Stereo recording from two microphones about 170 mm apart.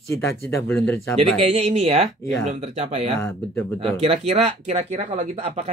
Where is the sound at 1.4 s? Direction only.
40° right (ahead or behind).